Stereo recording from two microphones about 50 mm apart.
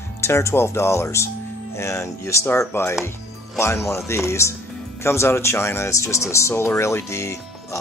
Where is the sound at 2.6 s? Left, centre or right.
Left.